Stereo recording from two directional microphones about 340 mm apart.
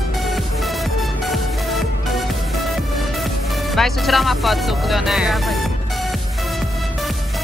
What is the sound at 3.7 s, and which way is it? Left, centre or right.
Speech, centre.